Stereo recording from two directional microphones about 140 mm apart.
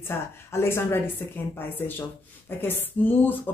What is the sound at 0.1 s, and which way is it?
Speech, 15° left (ahead or behind).